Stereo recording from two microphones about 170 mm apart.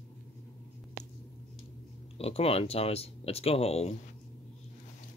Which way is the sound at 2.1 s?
35° left (ahead or behind).